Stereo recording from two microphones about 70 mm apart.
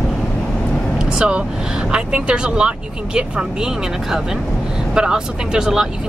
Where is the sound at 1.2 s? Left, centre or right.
Centre.